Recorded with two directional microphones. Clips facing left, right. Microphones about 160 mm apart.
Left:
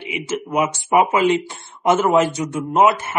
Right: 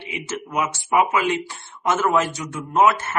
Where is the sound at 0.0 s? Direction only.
15° left (ahead or behind).